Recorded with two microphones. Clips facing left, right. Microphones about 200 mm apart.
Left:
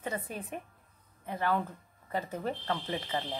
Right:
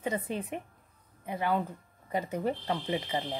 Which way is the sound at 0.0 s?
20° right (ahead or behind).